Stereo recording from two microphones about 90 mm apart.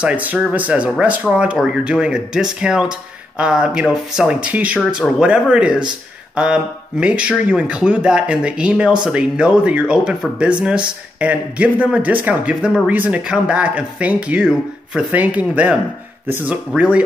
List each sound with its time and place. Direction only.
0.0 s speech: 15° right (ahead or behind)